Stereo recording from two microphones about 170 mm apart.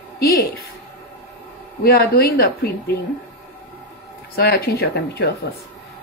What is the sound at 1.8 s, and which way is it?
Speech, 65° left (ahead or behind).